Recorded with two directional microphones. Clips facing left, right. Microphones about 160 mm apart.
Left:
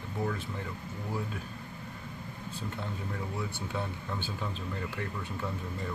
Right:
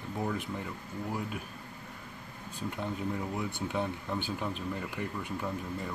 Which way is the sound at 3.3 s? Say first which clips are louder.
Right 2 dB; 20° right (ahead or behind).